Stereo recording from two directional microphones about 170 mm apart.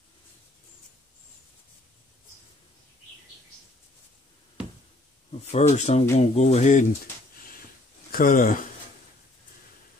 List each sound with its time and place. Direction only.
5.4 s speech: 40° left (ahead or behind)
8.1 s speech: 55° left (ahead or behind)